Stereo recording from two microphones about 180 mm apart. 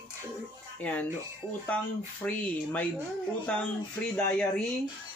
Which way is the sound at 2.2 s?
10° left (ahead or behind).